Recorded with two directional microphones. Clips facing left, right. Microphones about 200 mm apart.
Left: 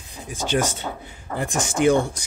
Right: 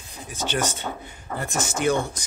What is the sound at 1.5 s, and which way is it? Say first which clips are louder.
Speech: left 5 dB; 15° left (ahead or behind).